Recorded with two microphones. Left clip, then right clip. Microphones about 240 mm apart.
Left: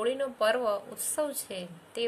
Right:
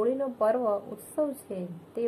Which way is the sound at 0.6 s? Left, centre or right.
Left.